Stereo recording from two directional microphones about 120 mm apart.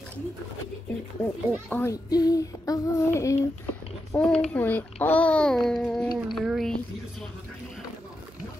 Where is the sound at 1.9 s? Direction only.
30° left (ahead or behind).